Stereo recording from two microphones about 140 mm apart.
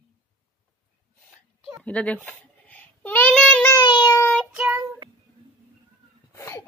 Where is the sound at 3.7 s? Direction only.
30° left (ahead or behind).